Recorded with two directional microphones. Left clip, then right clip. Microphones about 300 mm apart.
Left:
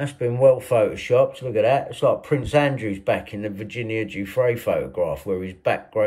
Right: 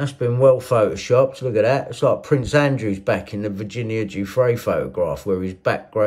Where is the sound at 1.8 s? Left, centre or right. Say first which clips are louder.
Right 1 dB; centre.